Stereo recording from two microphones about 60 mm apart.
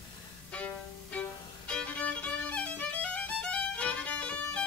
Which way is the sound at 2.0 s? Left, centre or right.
Left.